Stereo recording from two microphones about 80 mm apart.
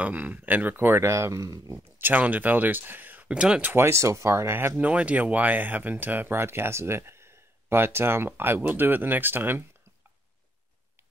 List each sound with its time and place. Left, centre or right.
0.0 s speech: centre
1.1 s speech: right
2.0 s speech: right
3.6 s speech: right
4.7 s speech: centre